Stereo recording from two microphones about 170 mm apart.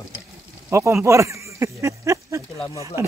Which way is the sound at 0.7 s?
15° right (ahead or behind).